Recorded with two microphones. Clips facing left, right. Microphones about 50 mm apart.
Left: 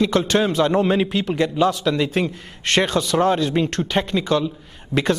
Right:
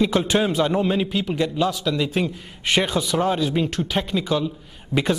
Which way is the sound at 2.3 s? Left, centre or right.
Centre.